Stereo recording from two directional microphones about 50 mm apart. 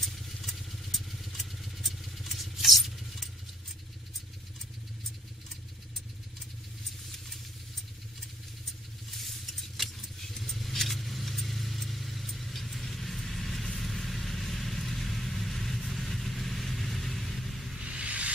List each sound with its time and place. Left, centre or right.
0.0 s vehicle: centre
9.1 s vehicle: centre
17.7 s a sound: centre